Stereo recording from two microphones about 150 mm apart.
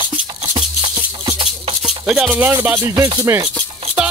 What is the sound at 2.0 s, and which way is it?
Music, 5° right (ahead or behind).